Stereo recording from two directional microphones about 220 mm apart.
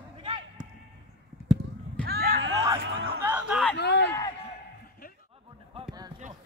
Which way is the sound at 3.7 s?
50° left (ahead or behind).